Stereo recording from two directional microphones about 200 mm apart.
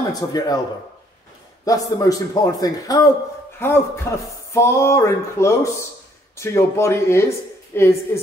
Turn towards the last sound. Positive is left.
turn(degrees=15)  # may be behind; listen again after turning